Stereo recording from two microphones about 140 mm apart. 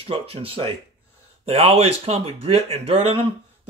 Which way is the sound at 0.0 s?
45° right (ahead or behind).